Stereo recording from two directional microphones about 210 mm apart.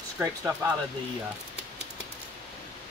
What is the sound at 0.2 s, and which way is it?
Speech, 15° right (ahead or behind).